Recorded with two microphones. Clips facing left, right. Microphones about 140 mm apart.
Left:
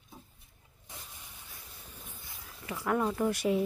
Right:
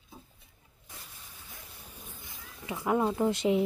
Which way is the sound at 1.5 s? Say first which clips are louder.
Right 2 dB; 15° right (ahead or behind).